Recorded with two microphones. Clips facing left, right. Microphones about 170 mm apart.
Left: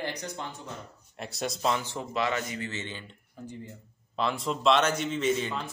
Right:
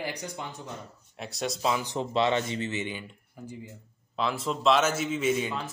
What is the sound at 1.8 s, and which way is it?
A man's voice, 20° right (ahead or behind).